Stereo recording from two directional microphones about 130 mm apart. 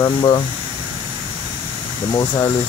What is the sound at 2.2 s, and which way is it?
Speech, 25° left (ahead or behind).